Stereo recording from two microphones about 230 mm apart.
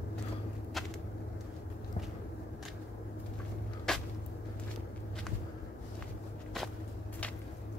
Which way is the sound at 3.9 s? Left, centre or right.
Centre.